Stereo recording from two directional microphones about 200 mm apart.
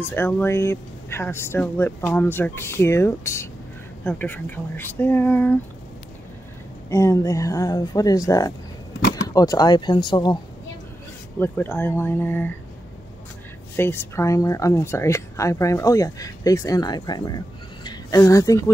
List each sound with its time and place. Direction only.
0.1 s speech: 10° left (ahead or behind)
6.9 s speech: 15° left (ahead or behind)
11.3 s speech: 10° left (ahead or behind)
13.7 s speech: 10° left (ahead or behind)